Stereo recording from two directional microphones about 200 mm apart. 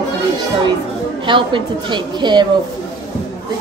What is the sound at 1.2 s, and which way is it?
A woman's voice, 25° right (ahead or behind).